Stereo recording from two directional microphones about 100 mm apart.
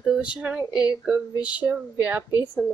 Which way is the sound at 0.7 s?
40° left (ahead or behind).